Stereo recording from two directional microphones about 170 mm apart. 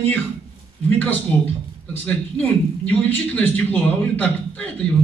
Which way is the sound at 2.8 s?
10° left (ahead or behind).